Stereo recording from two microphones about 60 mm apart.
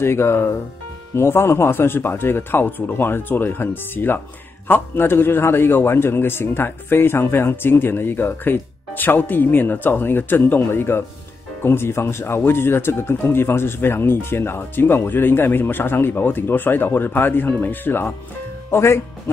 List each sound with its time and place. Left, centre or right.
0.0 s a man's voice: left
18.7 s speech: left